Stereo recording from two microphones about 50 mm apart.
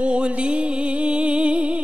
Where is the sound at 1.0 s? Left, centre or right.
Centre.